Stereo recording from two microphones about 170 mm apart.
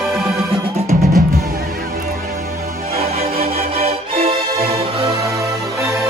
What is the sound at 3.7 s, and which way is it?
Music, 35° right (ahead or behind).